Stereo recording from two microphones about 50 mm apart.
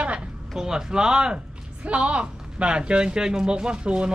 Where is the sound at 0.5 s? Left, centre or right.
Centre.